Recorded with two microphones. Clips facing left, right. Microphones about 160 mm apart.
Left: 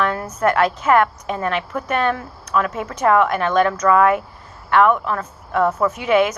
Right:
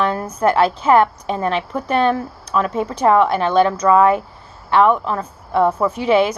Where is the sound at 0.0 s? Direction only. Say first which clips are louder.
Right 2 dB; 30° right (ahead or behind).